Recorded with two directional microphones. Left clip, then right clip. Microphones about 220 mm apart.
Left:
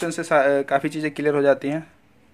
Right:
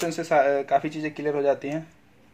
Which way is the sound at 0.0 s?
25° left (ahead or behind).